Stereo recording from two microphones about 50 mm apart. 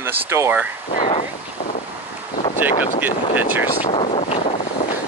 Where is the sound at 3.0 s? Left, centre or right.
Right.